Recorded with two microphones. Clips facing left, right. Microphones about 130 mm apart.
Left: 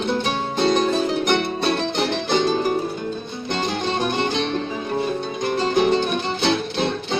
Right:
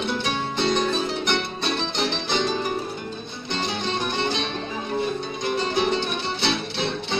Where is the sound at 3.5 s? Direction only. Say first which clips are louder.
Left 4 dB; 45° left (ahead or behind).